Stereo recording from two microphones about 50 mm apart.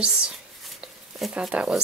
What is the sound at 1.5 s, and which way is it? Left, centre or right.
Speech, centre.